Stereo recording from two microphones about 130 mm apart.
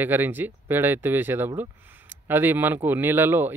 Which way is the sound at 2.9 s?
15° right (ahead or behind).